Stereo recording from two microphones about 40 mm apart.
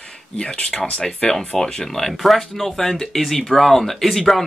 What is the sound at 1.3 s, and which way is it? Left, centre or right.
Speech, centre.